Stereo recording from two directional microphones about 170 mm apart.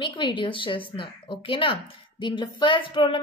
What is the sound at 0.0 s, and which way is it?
A woman's voice, 30° left (ahead or behind).